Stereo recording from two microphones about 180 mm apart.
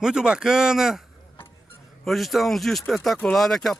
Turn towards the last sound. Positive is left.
turn(degrees=0)  # may be behind; listen again after turning